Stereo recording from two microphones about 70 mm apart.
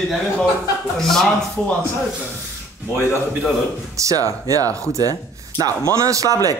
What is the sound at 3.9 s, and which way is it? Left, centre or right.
Speech, right.